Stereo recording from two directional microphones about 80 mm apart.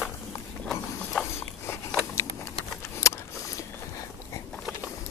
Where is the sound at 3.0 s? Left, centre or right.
Left.